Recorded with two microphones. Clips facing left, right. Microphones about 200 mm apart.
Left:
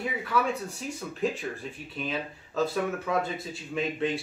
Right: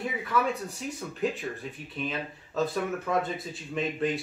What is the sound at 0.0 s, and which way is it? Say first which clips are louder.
Speech: even; centre (ahead or behind).